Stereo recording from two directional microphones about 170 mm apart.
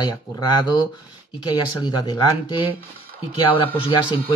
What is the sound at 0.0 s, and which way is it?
Speech, 25° left (ahead or behind).